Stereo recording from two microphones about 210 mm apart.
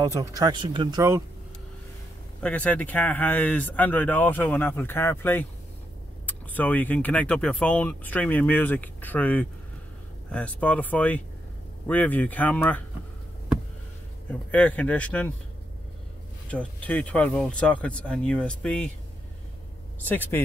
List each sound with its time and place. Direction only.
0.0 s speech: 15° right (ahead or behind)
2.4 s speech: 5° left (ahead or behind)
14.5 s speech: 5° left (ahead or behind)
16.4 s speech: 5° left (ahead or behind)
20.0 s speech: 10° left (ahead or behind)